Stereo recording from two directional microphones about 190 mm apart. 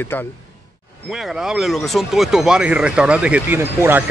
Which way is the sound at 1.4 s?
Centre (ahead or behind).